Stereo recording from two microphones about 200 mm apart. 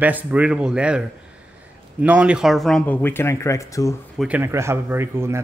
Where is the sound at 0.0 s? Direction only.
5° right (ahead or behind); by 3.9 s 15° left (ahead or behind).